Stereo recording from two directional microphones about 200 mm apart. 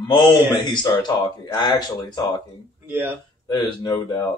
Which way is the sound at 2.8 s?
10° right (ahead or behind).